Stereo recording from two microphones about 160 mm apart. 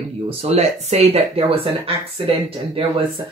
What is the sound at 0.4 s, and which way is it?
Speech, 40° right (ahead or behind).